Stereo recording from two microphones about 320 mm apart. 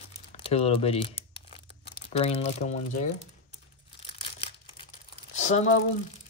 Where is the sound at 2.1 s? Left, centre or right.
Centre.